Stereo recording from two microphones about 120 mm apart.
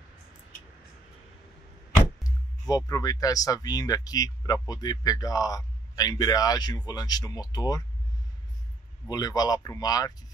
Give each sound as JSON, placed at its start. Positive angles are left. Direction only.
{"t": 2.7, "sound": "speech", "side_deg": 30}
{"t": 9.1, "sound": "speech", "side_deg": 30}